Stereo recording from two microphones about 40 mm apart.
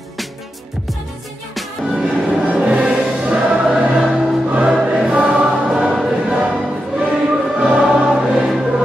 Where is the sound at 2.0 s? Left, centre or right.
Right.